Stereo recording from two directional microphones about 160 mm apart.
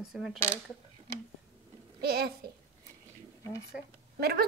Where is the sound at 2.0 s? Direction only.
70° right (ahead or behind).